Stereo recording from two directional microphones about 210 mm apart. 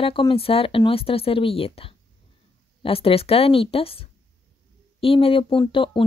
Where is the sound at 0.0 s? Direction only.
25° left (ahead or behind).